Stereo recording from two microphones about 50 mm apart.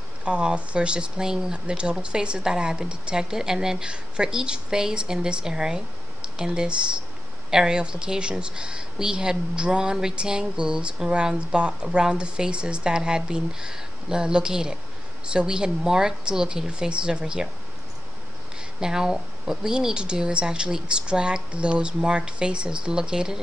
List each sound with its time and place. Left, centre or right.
0.2 s speech: right
18.8 s speech: centre